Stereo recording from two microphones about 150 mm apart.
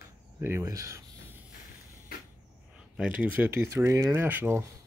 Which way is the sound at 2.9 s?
5° right (ahead or behind).